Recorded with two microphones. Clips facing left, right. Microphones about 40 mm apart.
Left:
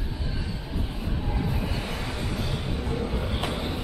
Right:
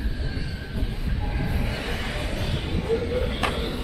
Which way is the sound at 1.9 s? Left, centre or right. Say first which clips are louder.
Right 2 dB; right.